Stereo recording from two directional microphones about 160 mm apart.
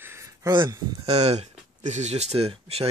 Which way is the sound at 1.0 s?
40° right (ahead or behind).